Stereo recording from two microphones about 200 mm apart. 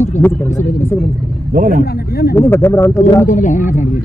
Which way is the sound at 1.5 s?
40° right (ahead or behind).